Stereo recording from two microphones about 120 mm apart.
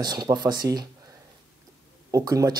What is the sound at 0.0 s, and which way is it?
Speech, 35° right (ahead or behind).